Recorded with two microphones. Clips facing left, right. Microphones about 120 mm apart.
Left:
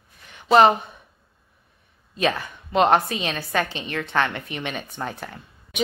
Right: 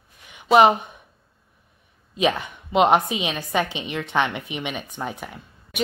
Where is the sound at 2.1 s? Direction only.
15° right (ahead or behind).